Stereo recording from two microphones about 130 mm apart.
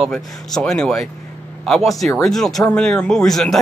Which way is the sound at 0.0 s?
Centre (ahead or behind).